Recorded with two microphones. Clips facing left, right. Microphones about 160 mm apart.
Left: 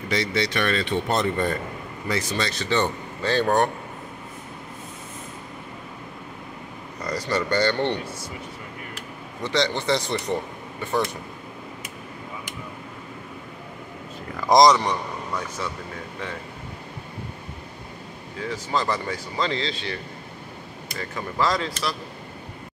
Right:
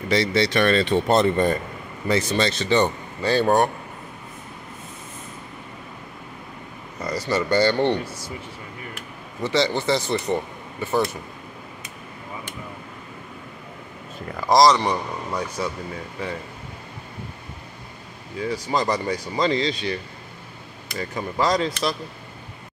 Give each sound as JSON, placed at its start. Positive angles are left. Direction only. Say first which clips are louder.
{"t": 0.1, "sound": "speech", "louder": "right 4 dB", "side_deg": -30}
{"t": 7.0, "sound": "speech", "louder": "right 2 dB", "side_deg": -5}
{"t": 9.4, "sound": "speech", "louder": "right 2 dB", "side_deg": -5}
{"t": 14.5, "sound": "speech", "louder": "even", "side_deg": 20}
{"t": 14.9, "sound": "speech", "louder": "right 2 dB", "side_deg": -15}
{"t": 18.5, "sound": "speech", "louder": "right 2 dB", "side_deg": -15}
{"t": 21.0, "sound": "speech", "louder": "right 2 dB", "side_deg": -20}